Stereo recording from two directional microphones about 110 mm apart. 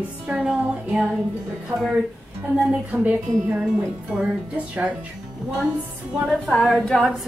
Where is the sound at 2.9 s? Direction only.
20° right (ahead or behind).